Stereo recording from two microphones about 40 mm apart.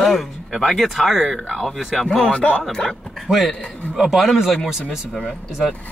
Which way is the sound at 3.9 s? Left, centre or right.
Centre.